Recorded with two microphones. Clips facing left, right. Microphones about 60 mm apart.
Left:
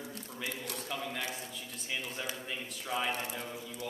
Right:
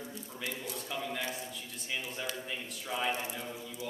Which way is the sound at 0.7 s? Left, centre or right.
Centre.